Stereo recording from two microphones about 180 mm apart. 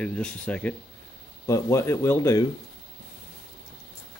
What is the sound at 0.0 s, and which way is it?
Speech, 5° left (ahead or behind).